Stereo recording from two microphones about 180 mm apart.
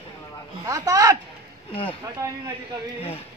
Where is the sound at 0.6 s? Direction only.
20° right (ahead or behind).